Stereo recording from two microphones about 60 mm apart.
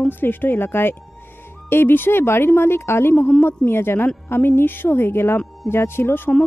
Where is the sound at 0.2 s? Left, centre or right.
Left.